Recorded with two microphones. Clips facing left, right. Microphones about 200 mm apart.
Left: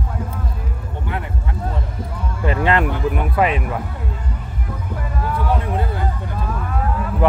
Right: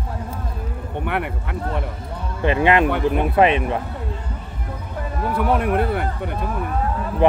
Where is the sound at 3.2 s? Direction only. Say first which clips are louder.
Right 3 dB; 25° right (ahead or behind).